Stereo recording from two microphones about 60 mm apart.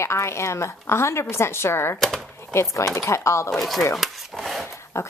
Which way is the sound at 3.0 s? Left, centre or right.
Left.